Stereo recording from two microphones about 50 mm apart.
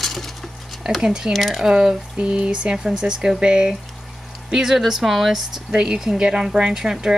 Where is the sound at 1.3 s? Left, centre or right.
Centre.